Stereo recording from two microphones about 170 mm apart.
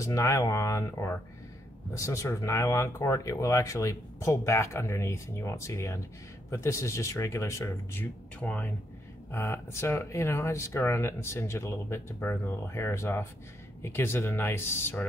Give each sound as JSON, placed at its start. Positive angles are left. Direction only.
{"t": 0.0, "sound": "speech", "side_deg": 20}